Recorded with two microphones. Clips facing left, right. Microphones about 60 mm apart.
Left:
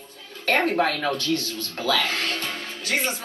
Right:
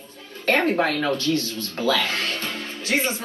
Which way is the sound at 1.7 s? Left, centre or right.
Right.